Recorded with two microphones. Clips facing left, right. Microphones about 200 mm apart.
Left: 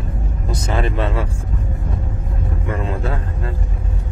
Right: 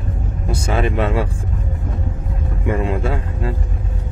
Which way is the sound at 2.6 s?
15° right (ahead or behind).